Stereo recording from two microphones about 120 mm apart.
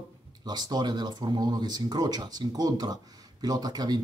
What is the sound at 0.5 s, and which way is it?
Speech, 35° right (ahead or behind).